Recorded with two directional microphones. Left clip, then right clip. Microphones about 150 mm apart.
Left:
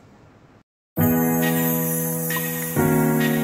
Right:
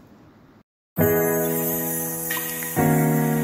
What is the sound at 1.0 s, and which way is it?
Music, centre (ahead or behind).